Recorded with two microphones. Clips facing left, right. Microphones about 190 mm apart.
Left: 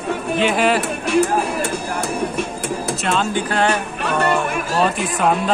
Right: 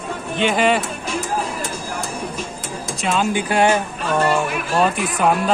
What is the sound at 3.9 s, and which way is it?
Music, 65° left (ahead or behind).